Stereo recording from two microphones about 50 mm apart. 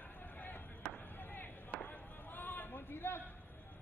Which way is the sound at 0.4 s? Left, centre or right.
Left.